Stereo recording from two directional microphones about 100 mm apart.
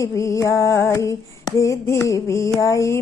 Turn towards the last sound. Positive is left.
turn(degrees=30)  # may be behind; listen again after turning